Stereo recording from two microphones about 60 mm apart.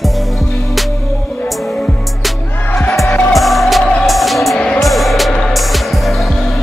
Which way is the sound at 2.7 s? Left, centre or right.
Left.